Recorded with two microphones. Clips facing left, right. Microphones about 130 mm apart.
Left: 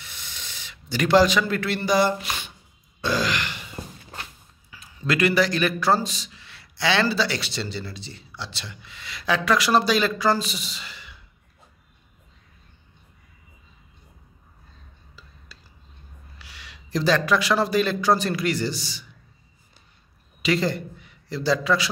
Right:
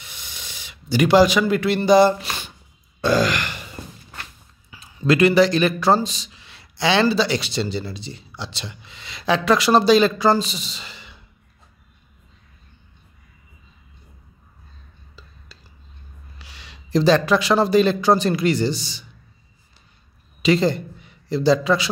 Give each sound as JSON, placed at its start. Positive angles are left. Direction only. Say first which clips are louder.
{"t": 0.0, "sound": "a sound", "louder": "right 1 dB", "side_deg": -15}
{"t": 3.0, "sound": "sigh", "louder": "right 6 dB", "side_deg": -50}
{"t": 4.6, "sound": "a man's voice", "louder": "right 7 dB", "side_deg": -25}
{"t": 16.3, "sound": "speech", "louder": "right 1 dB", "side_deg": -25}
{"t": 20.4, "sound": "a man's voice", "louder": "right 5 dB", "side_deg": -25}